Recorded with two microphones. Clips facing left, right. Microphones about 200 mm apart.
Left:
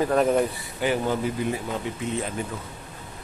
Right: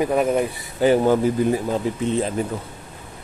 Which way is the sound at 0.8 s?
40° right (ahead or behind).